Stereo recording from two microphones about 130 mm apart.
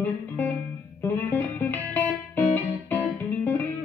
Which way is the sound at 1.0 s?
15° left (ahead or behind).